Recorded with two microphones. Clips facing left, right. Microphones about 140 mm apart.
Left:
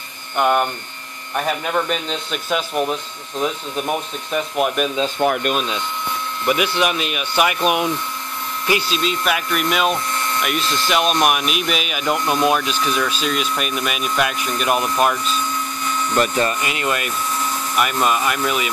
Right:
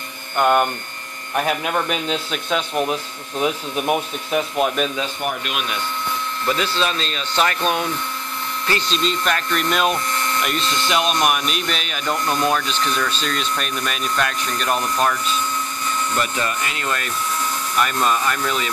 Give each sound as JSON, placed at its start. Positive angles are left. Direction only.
{"t": 0.4, "sound": "speech", "side_deg": 0}
{"t": 2.3, "sound": "speech", "side_deg": 5}
{"t": 2.9, "sound": "speech", "side_deg": -10}
{"t": 4.6, "sound": "speech", "side_deg": 5}
{"t": 5.4, "sound": "speech", "side_deg": 40}
{"t": 6.4, "sound": "speech", "side_deg": 15}
{"t": 16.2, "sound": "speech", "side_deg": 40}
{"t": 16.6, "sound": "speech", "side_deg": 15}